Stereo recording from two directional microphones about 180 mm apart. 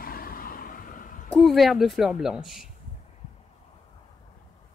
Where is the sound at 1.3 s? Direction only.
Centre (ahead or behind).